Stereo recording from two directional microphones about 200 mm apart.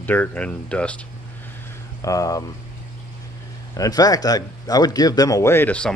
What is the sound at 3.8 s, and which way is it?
Speech, 20° left (ahead or behind).